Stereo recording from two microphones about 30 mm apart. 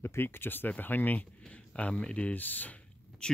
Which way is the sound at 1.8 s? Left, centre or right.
Left.